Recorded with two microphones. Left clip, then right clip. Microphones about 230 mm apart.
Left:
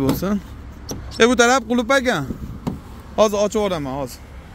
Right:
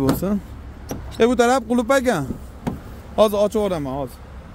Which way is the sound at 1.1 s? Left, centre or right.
Centre.